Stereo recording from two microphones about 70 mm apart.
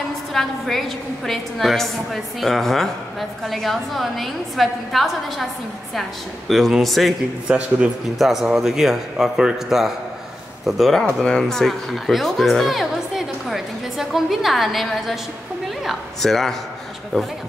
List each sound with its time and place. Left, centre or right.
0.3 s speech: centre
7.4 s a man's voice: centre
8.2 s speech: centre